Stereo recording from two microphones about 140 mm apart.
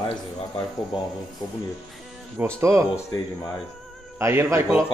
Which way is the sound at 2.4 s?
15° right (ahead or behind).